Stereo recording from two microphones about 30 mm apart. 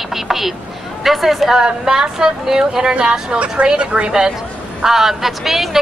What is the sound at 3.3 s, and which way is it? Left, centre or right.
A woman's voice, right.